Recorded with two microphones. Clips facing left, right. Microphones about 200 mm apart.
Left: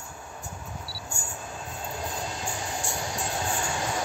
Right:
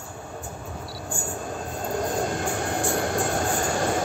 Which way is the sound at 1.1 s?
40° right (ahead or behind).